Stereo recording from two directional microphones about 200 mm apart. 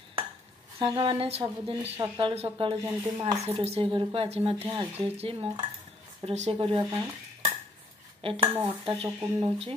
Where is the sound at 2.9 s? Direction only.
15° right (ahead or behind).